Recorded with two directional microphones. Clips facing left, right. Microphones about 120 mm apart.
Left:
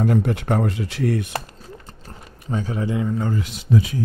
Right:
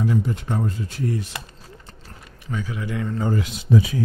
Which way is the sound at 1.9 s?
40° left (ahead or behind).